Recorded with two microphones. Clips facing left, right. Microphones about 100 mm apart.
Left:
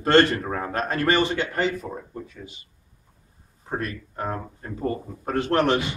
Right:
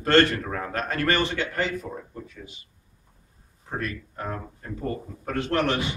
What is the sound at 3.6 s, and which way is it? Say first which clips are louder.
Speech: left 2 dB; 30° left (ahead or behind).